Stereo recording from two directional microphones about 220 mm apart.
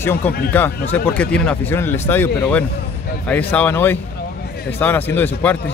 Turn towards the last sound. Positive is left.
turn(degrees=10)  # may be behind; listen again after turning